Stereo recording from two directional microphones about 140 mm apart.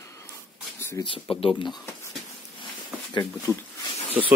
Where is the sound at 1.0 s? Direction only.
40° left (ahead or behind).